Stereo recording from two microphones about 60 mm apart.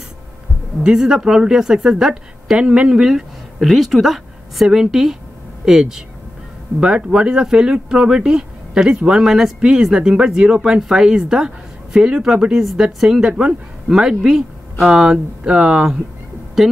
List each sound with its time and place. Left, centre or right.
0.8 s speech: centre
13.3 s speech: centre
13.8 s speech: centre